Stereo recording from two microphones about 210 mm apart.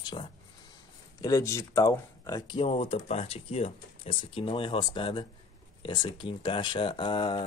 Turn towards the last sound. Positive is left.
turn(degrees=20)  # may be behind; listen again after turning